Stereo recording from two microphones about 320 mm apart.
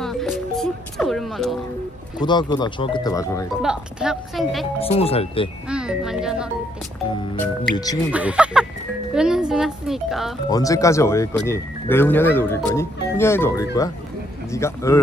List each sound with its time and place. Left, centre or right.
0.0 s music: centre
2.1 s speech: centre
3.6 s speech: centre
4.7 s speech: centre
5.7 s speech: centre
7.1 s speech: centre
8.1 s speech: centre
10.5 s speech: centre